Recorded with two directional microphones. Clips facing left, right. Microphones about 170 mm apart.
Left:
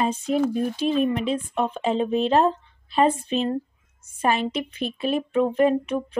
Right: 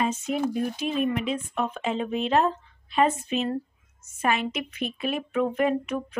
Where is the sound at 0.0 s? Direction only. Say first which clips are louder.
Left 4 dB; 35° left (ahead or behind).